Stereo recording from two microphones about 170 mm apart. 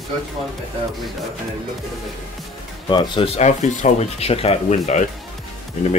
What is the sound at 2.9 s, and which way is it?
Speech, 30° left (ahead or behind).